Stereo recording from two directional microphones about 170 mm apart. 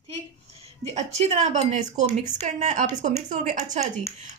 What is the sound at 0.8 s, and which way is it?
A woman's voice, 40° right (ahead or behind).